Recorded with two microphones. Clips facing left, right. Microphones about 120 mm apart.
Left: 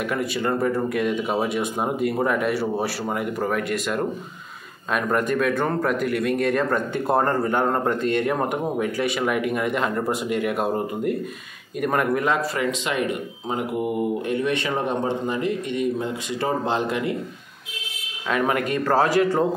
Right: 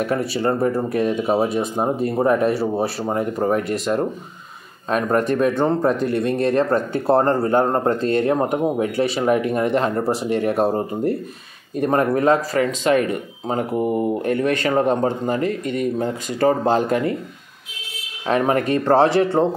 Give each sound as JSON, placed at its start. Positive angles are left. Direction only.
{"t": 0.0, "sound": "speech", "side_deg": -30}
{"t": 18.2, "sound": "speech", "side_deg": -35}